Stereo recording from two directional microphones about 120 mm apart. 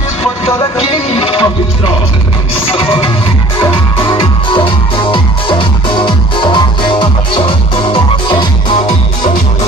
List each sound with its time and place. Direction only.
0.8 s music: 50° left (ahead or behind)
2.7 s music: 45° left (ahead or behind)